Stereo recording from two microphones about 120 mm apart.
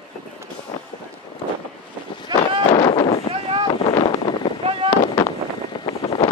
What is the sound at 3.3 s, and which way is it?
Wind noise, 50° right (ahead or behind).